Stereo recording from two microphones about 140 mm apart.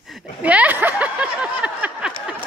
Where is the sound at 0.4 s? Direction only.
10° right (ahead or behind).